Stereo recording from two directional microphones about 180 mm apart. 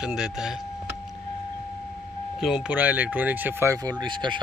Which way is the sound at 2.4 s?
5° right (ahead or behind).